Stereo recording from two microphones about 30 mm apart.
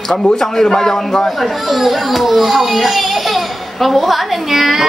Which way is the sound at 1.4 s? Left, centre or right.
Centre.